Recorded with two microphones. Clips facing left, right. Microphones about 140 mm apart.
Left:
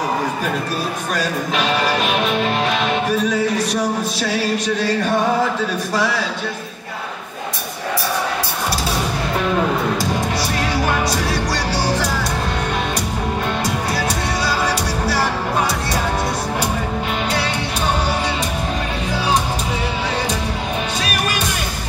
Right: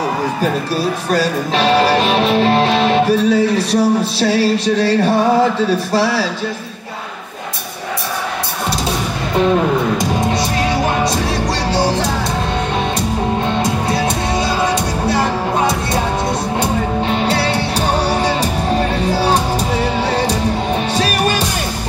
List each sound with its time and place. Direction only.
1.1 s music: 30° right (ahead or behind)
11.7 s music: 25° right (ahead or behind)
13.6 s music: 25° right (ahead or behind)
17.1 s music: 30° right (ahead or behind)